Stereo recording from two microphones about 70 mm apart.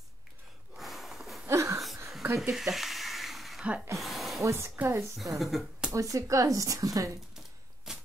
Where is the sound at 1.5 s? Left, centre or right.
Right.